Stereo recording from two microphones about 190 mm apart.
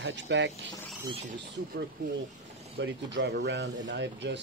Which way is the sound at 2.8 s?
70° right (ahead or behind).